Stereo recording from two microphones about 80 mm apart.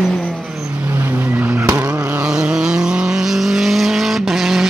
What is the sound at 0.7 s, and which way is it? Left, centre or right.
Vehicle, right.